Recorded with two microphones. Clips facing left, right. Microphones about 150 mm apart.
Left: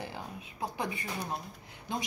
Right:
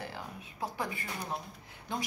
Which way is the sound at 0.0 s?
20° left (ahead or behind).